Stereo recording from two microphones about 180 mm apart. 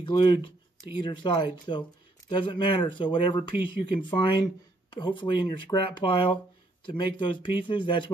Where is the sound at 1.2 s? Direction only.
25° left (ahead or behind).